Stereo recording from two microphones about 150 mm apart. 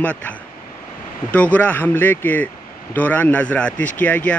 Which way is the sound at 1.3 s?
10° left (ahead or behind).